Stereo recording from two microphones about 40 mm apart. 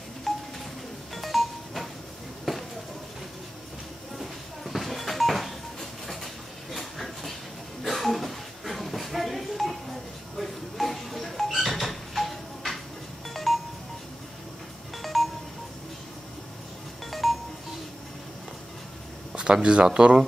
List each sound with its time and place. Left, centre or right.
0.3 s music: centre
1.1 s doorbell: centre
2.5 s a sound: centre
4.2 s a sound: centre
10.3 s music: centre
15.0 s music: centre
17.0 s music: centre
19.3 s speech: right